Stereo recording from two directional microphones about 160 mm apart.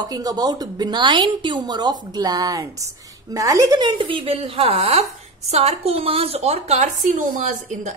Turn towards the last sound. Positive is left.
turn(degrees=-50)  # may be behind; listen again after turning